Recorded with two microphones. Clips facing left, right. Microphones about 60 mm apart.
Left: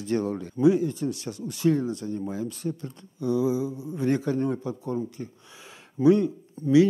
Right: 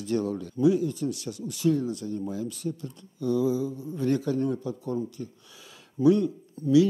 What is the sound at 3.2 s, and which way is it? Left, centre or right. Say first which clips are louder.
Speech: left 1 dB; centre.